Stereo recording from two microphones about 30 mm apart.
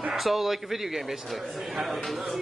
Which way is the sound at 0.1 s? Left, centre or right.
Centre.